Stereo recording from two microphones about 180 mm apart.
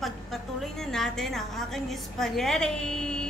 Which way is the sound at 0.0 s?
Centre (ahead or behind).